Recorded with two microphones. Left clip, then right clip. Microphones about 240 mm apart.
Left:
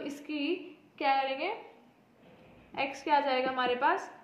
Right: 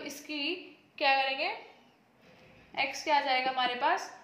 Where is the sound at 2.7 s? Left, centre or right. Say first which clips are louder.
Even; right.